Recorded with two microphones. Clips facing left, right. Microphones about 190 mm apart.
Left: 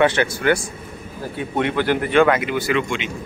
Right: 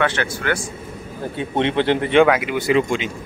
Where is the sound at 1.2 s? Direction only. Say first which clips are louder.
Right 1 dB; 25° right (ahead or behind).